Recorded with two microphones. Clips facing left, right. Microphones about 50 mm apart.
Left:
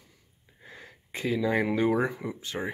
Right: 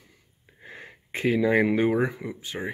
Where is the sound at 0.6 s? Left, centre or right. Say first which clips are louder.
Right 4 dB; right.